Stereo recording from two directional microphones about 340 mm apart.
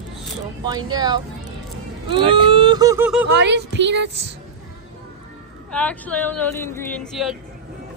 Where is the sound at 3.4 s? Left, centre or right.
Right.